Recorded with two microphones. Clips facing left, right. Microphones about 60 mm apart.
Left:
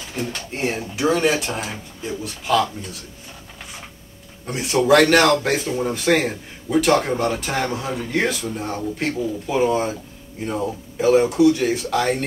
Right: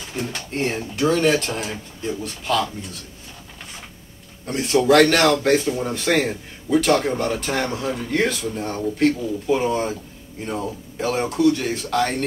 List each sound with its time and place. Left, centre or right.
0.3 s speech: centre
4.5 s speech: centre